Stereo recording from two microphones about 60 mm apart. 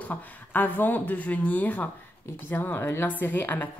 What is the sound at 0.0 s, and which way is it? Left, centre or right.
A woman's voice, left.